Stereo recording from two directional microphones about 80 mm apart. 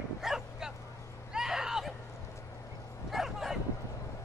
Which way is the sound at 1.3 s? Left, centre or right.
Centre.